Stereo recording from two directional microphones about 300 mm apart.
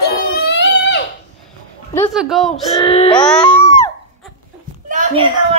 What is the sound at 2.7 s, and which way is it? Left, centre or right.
Speech, centre.